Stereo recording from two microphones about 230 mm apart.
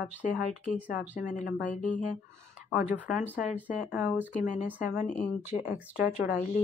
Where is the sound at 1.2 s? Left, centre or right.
Left.